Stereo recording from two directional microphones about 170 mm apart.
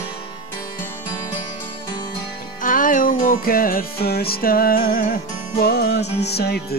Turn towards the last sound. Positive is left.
turn(degrees=70)  # may be behind; listen again after turning